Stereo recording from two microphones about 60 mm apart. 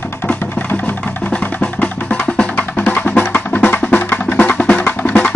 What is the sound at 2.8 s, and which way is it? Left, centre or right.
Music, left.